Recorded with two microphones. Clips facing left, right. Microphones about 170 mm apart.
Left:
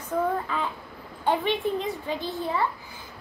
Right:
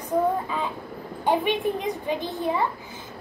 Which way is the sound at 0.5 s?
15° right (ahead or behind).